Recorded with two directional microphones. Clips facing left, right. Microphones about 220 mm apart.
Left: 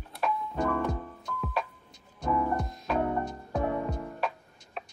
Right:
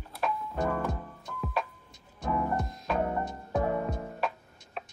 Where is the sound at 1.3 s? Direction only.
Centre (ahead or behind).